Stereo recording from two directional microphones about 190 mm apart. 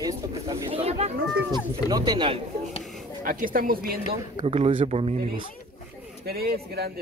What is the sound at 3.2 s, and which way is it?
Speech, 45° right (ahead or behind).